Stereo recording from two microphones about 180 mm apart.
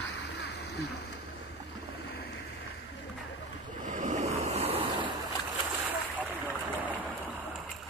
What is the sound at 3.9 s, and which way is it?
Ocean, 40° right (ahead or behind).